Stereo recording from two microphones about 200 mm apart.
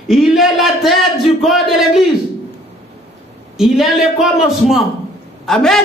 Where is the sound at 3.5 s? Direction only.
Centre (ahead or behind).